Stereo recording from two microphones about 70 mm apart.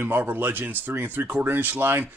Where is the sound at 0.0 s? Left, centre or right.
Right.